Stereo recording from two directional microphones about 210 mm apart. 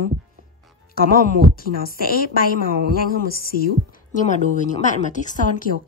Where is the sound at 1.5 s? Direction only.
45° left (ahead or behind).